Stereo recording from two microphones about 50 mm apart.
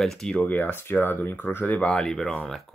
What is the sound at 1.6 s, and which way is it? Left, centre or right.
Speech, left.